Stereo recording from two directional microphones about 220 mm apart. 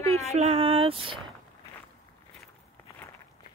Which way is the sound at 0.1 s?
30° right (ahead or behind).